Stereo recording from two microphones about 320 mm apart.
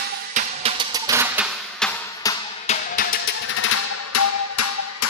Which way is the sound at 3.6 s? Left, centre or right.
Left.